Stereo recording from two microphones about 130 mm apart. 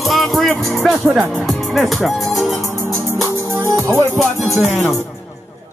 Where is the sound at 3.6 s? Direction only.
20° right (ahead or behind).